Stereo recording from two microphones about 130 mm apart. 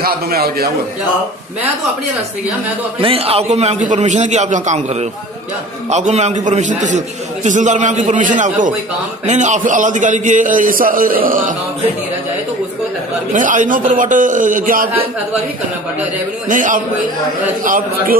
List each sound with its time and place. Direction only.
3.0 s a man's voice: 45° right (ahead or behind); by 8.7 s 80° right
9.2 s a man's voice: 65° right (ahead or behind); by 11.5 s 90° right
13.3 s a man's voice: 85° right
16.4 s a man's voice: 90° right